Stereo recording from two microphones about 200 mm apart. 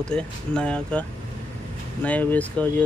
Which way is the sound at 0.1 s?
5° left (ahead or behind).